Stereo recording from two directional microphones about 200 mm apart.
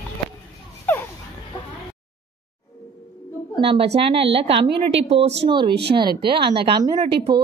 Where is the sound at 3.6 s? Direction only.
30° right (ahead or behind).